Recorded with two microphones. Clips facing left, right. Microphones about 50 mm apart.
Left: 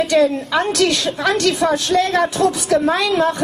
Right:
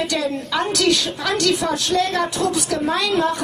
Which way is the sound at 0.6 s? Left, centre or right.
Centre.